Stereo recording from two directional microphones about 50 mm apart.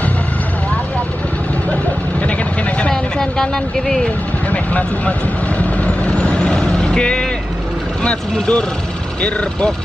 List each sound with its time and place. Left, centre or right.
1.7 s vehicle: left
2.9 s vehicle: centre
4.5 s vehicle: left
8.0 s speech: left